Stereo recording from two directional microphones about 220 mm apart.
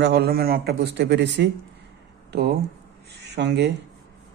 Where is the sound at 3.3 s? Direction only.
50° right (ahead or behind).